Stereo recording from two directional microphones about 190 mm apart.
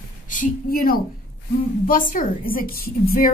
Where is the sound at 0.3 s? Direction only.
45° left (ahead or behind).